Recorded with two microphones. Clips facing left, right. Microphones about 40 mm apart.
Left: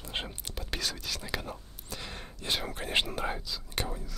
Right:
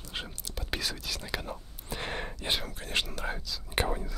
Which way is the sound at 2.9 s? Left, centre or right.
Left.